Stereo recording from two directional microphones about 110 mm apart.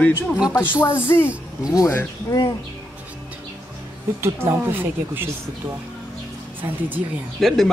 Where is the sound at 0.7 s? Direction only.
20° left (ahead or behind).